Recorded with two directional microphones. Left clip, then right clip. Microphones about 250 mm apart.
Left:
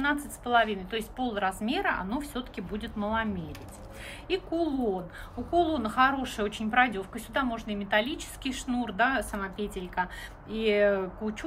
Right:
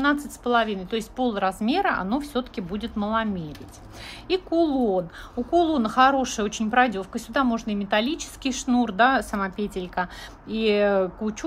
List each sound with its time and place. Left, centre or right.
0.0 s speech: centre
4.3 s speech: centre